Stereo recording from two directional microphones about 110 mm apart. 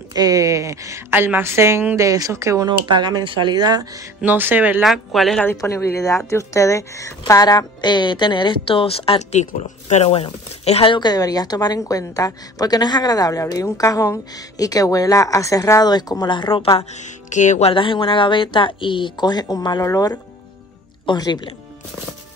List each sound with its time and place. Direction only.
0.1 s a woman's voice: 35° right (ahead or behind)
2.9 s speech: 40° right (ahead or behind)
4.2 s speech: 15° right (ahead or behind)
4.8 s speech: centre (ahead or behind)
5.6 s a woman's voice: 25° left (ahead or behind); by 10.9 s 60° left (ahead or behind)
10.9 s a woman's voice: 40° left (ahead or behind)
16.9 s speech: 90° left
17.7 s a woman's voice: 50° left (ahead or behind); by 20.2 s 30° left (ahead or behind)
21.0 s speech: 45° left (ahead or behind)